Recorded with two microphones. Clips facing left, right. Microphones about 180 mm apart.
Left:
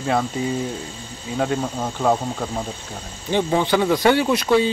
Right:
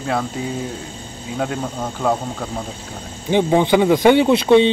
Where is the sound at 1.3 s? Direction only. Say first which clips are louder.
Left 1 dB; centre (ahead or behind).